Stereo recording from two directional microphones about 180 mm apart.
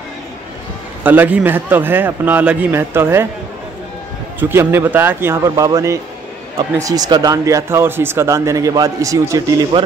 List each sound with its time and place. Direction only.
1.0 s speech: 10° right (ahead or behind)
4.4 s speech: 10° right (ahead or behind)